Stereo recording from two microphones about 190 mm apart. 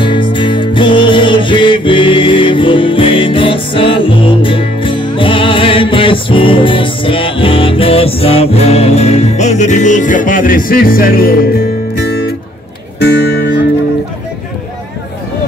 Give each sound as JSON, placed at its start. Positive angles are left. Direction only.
{"t": 0.0, "sound": "music", "side_deg": 25}